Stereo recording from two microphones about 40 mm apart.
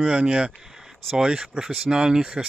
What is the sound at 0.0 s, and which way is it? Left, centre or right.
Speech, right.